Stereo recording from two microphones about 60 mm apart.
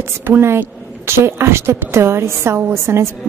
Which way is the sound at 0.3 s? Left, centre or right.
Right.